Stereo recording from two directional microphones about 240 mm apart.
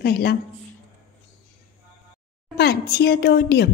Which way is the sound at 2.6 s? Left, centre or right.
Left.